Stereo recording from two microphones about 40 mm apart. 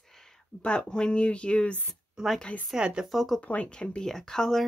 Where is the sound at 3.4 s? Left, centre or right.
Left.